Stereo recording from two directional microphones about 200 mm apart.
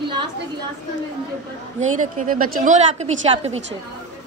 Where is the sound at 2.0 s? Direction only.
40° right (ahead or behind).